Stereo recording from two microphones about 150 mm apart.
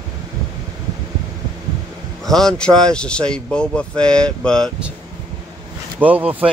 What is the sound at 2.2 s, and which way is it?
Speech, 5° left (ahead or behind).